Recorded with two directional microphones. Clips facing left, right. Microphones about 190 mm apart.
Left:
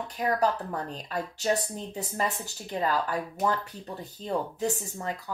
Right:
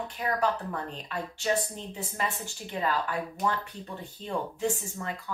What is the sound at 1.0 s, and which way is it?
A woman's voice, 40° left (ahead or behind).